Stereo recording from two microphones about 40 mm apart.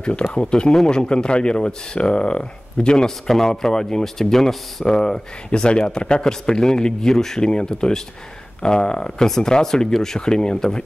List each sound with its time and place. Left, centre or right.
0.0 s speech: left